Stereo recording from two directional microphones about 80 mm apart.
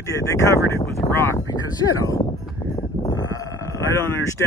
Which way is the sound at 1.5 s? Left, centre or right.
Left.